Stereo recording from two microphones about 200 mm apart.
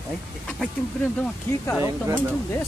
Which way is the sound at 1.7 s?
10° right (ahead or behind).